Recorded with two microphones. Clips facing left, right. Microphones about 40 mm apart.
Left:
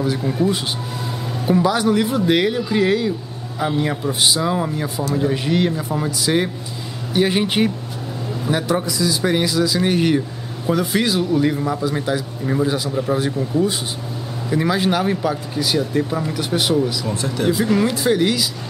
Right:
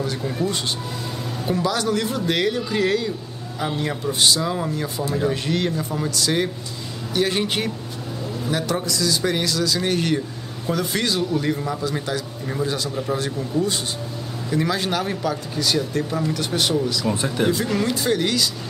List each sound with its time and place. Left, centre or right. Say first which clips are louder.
0.0 s speech: left 5 dB; centre
17.1 s speech: even; right
17.5 s speech: left 4 dB; centre